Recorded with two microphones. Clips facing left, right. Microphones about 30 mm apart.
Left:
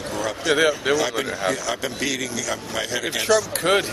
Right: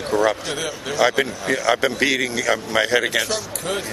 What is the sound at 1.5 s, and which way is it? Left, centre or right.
Speech, right.